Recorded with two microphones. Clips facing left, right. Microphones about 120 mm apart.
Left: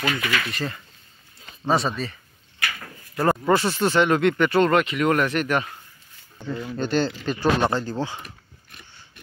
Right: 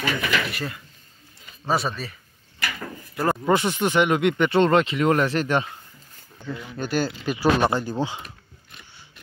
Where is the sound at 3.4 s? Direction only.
20° right (ahead or behind).